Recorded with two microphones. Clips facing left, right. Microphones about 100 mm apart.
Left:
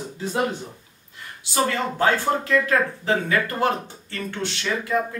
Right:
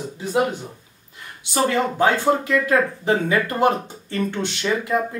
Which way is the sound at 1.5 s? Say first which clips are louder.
Right 3 dB; 15° right (ahead or behind).